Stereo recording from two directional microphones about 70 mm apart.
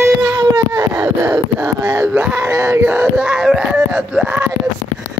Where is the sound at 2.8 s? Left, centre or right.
Right.